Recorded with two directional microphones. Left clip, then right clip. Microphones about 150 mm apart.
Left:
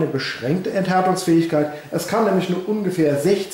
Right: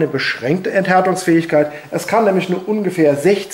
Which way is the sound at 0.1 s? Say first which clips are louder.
Right 5 dB; 20° right (ahead or behind).